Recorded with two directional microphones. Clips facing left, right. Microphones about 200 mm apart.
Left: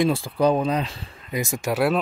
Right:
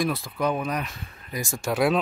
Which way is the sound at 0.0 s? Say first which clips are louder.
Left 6 dB; 30° left (ahead or behind).